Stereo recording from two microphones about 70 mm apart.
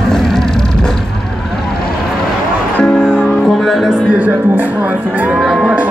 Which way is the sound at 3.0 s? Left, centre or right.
Centre.